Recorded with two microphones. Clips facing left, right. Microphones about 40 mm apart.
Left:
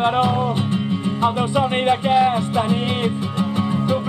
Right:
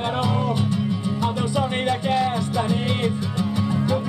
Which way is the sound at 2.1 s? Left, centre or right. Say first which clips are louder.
Left 5 dB; left.